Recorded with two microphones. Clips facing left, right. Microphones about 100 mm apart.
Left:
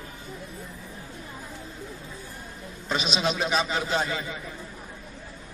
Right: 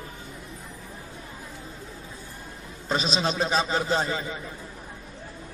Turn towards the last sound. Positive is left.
turn(degrees=-30)  # may be behind; listen again after turning